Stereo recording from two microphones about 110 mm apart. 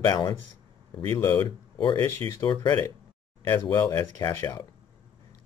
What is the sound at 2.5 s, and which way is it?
Speech, 20° left (ahead or behind).